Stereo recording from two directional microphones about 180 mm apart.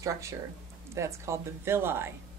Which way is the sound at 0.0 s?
15° right (ahead or behind).